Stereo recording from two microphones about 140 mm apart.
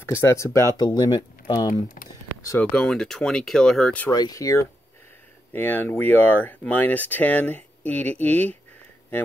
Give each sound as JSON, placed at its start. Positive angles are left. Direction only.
{"t": 0.0, "sound": "speech", "side_deg": 15}
{"t": 2.7, "sound": "speech", "side_deg": 5}
{"t": 4.1, "sound": "speech", "side_deg": 25}